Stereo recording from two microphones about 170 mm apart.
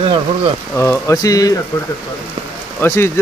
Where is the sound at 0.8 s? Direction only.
15° left (ahead or behind).